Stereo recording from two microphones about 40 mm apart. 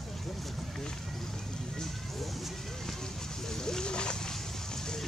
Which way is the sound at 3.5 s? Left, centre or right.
Centre.